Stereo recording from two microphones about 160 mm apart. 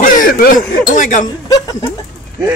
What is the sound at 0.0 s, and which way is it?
Speech, 60° left (ahead or behind).